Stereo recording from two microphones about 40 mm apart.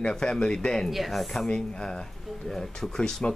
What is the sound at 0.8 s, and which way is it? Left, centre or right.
Speech, centre.